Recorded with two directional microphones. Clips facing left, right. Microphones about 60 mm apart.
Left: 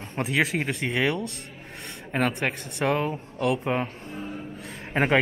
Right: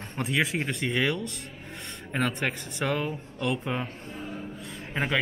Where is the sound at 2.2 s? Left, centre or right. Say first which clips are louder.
Left 3 dB; left.